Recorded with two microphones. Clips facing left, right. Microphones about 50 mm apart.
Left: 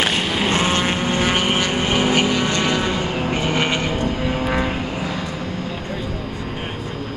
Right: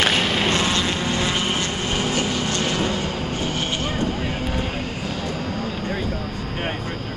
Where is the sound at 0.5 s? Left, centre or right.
Left.